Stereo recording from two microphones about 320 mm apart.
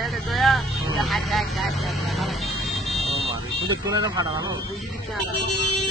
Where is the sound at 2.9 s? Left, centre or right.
Centre.